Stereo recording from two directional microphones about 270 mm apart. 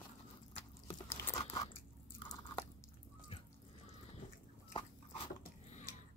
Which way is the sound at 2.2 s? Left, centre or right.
Centre.